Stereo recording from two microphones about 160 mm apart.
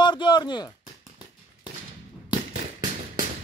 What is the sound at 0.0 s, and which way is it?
Chop, 30° left (ahead or behind).